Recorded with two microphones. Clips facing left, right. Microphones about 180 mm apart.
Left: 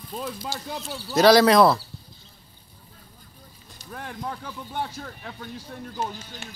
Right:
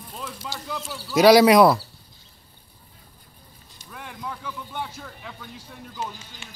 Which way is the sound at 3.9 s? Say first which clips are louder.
Left 2 dB; 40° left (ahead or behind).